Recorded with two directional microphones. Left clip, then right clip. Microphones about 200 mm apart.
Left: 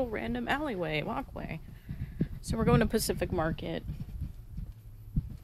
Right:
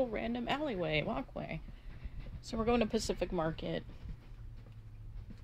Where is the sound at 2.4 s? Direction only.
20° left (ahead or behind).